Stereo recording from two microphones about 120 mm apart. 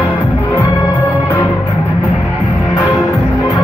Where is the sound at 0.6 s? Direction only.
20° left (ahead or behind).